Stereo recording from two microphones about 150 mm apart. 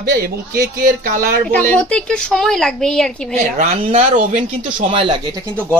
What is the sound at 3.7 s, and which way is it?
Speech, 40° right (ahead or behind).